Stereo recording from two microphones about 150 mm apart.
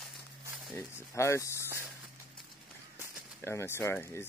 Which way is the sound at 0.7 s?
20° left (ahead or behind).